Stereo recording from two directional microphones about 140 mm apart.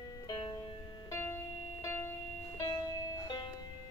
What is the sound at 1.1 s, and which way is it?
Music, 20° left (ahead or behind).